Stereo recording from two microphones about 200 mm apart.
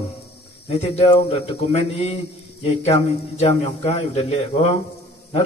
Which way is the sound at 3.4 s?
30° left (ahead or behind).